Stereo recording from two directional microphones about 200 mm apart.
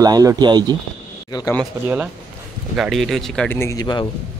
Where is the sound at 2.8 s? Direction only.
Centre (ahead or behind); by 4.1 s 20° left (ahead or behind).